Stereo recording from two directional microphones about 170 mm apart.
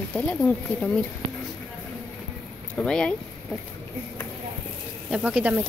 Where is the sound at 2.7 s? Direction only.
5° left (ahead or behind).